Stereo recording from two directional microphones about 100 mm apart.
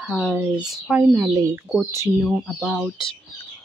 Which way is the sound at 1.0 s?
30° right (ahead or behind).